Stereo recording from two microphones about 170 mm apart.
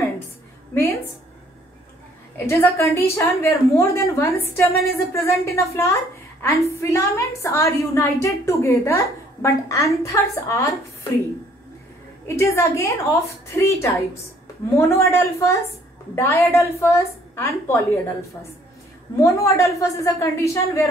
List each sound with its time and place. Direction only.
2.3 s a woman's voice: 15° left (ahead or behind)
12.3 s a woman's voice: 15° left (ahead or behind)
19.1 s a woman's voice: 15° left (ahead or behind)